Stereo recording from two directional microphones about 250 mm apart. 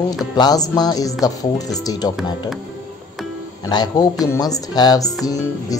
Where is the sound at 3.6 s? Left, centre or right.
Centre.